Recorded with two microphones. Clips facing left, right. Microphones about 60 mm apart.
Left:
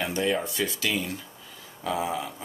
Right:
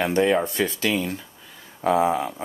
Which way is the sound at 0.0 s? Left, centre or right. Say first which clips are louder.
Right 7 dB; right.